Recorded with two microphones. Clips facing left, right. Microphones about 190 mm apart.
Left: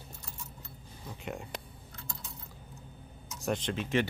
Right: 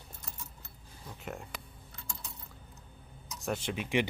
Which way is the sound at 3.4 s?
5° right (ahead or behind).